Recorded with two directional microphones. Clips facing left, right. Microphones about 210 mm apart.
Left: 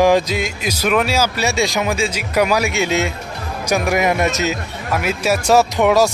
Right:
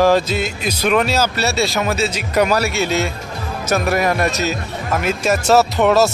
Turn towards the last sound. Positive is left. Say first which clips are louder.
# even
turn(degrees=10)  # may be behind; listen again after turning